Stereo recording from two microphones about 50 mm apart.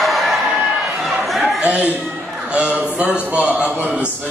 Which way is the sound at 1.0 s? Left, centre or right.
Centre.